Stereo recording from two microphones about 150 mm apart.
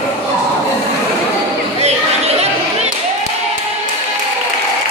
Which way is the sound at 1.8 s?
45° right (ahead or behind).